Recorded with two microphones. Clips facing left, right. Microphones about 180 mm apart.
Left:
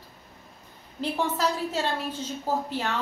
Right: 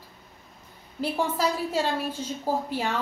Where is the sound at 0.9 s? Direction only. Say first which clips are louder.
Right 1 dB; 10° right (ahead or behind).